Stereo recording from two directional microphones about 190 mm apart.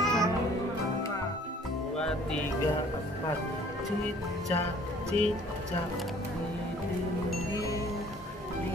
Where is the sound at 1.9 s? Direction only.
5° left (ahead or behind).